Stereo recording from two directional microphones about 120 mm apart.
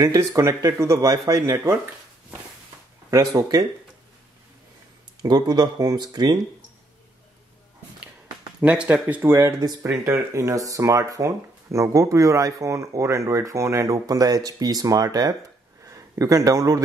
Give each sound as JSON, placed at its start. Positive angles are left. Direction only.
{"t": 0.0, "sound": "speech", "side_deg": -30}
{"t": 3.1, "sound": "speech", "side_deg": -25}
{"t": 5.2, "sound": "speech", "side_deg": -35}
{"t": 8.5, "sound": "speech", "side_deg": -10}